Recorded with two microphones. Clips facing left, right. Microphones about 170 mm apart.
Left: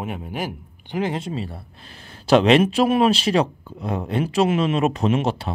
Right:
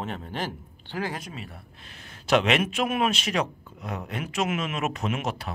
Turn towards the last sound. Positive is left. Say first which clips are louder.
# left 8 dB
turn(degrees=30)  # may be behind; listen again after turning